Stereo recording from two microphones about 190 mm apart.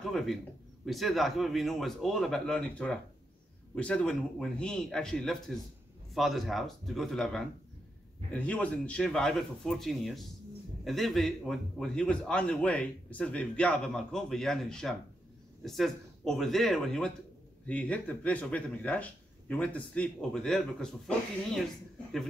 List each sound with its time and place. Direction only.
0.0 s a man's voice: centre (ahead or behind)